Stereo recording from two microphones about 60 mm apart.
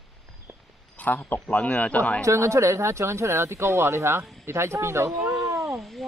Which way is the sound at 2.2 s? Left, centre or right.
Right.